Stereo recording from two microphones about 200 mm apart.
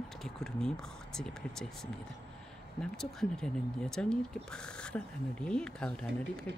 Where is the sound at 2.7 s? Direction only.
5° left (ahead or behind).